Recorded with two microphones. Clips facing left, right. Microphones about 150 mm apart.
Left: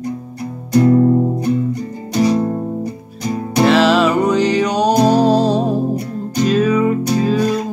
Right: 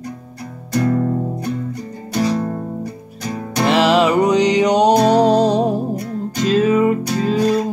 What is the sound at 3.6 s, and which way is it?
Music, 15° right (ahead or behind).